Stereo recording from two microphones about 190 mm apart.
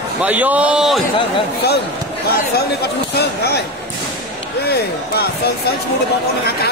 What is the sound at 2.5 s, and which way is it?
Speech, 55° left (ahead or behind).